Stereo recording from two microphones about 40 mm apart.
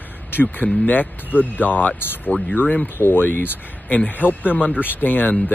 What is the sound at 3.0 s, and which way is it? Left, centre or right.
Speech, left.